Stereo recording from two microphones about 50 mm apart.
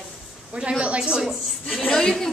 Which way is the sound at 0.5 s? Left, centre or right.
Right.